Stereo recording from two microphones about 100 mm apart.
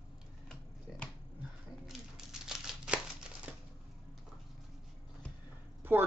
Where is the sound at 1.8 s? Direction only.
5° right (ahead or behind).